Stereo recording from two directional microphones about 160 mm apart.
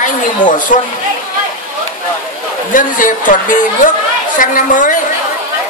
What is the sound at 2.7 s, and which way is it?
Speech, 55° left (ahead or behind).